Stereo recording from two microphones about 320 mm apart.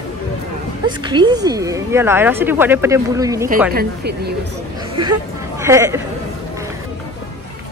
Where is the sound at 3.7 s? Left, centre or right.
Right.